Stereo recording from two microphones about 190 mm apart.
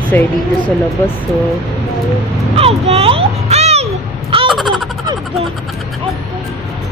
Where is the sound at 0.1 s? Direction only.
10° left (ahead or behind).